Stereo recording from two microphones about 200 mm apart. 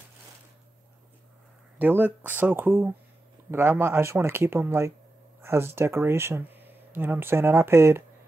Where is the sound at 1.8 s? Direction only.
10° right (ahead or behind).